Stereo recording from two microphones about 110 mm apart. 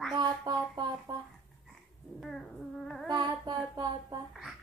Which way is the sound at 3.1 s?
40° right (ahead or behind).